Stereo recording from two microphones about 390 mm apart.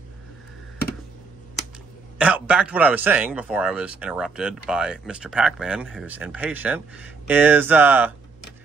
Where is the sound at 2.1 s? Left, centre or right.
Centre.